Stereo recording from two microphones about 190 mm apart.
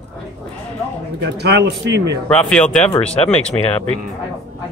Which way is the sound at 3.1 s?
35° left (ahead or behind).